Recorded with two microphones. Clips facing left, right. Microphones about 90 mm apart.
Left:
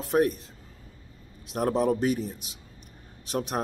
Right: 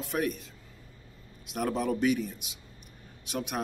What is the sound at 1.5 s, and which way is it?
Speech, 35° left (ahead or behind).